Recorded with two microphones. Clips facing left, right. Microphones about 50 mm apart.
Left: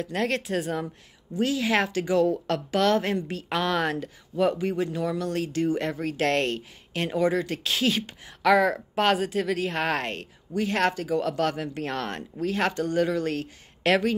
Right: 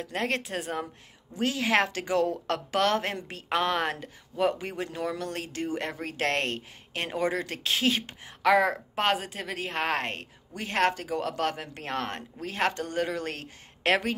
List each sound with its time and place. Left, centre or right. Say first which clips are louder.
0.0 s a woman's voice: left 3 dB; right
1.4 s a woman's voice: left 1 dB; right
3.4 s speech: even; right
7.7 s a woman's voice: left 1 dB; right
8.4 s a woman's voice: left 2 dB; centre; by 14.1 s right